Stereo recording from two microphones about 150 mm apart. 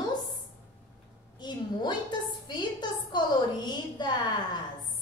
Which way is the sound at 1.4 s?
30° left (ahead or behind).